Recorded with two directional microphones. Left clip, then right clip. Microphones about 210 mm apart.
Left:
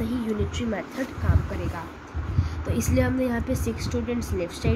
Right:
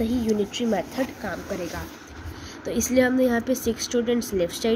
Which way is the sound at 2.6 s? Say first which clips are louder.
Right 5 dB; 20° right (ahead or behind).